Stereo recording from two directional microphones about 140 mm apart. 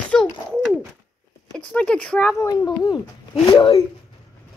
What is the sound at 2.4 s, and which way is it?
Speech, 25° left (ahead or behind).